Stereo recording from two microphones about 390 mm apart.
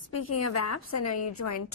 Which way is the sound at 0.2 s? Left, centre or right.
Left.